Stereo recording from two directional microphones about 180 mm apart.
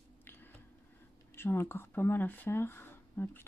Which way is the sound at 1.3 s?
15° left (ahead or behind).